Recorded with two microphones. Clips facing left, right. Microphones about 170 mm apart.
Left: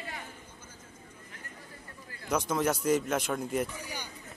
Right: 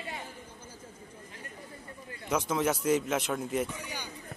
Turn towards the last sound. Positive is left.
turn(degrees=0)  # may be behind; listen again after turning